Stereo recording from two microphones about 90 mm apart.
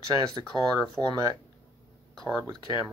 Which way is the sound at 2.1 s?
5° left (ahead or behind).